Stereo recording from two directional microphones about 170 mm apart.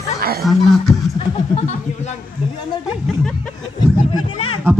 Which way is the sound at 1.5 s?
40° left (ahead or behind).